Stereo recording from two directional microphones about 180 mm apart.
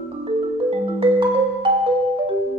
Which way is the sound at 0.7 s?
30° right (ahead or behind).